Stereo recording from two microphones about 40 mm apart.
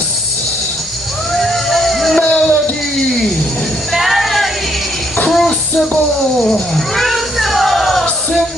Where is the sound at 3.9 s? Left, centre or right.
Centre.